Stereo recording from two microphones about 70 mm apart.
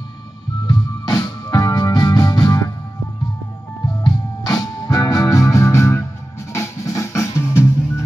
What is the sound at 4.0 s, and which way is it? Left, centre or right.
Music, left.